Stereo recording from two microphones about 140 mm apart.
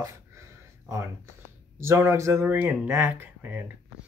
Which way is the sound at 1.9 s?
20° right (ahead or behind).